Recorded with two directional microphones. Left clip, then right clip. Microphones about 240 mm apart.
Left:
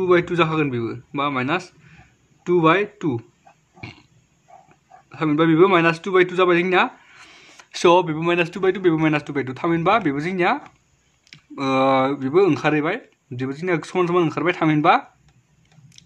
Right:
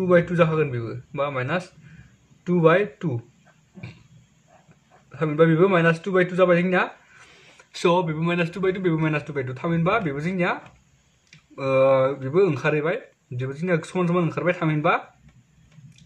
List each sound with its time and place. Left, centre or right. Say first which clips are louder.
0.0 s a man's voice: left 1 dB; left
5.1 s a man's voice: left 2 dB; left